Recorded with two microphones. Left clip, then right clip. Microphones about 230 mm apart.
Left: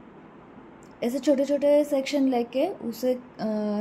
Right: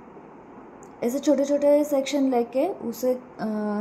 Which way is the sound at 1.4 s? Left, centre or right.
Left.